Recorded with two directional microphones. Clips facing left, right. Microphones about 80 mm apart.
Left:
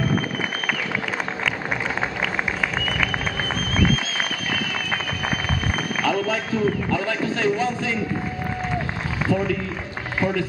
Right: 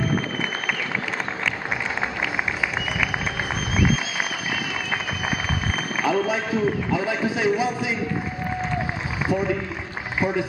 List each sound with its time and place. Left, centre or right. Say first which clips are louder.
2.8 s a sound: left 1 dB; centre
6.0 s a man's voice: right 1 dB; centre
9.3 s a man's voice: left 1 dB; centre